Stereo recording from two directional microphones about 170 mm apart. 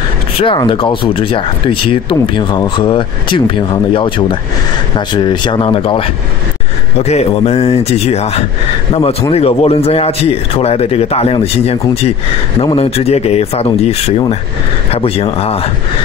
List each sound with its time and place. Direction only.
0.4 s speech: 30° left (ahead or behind)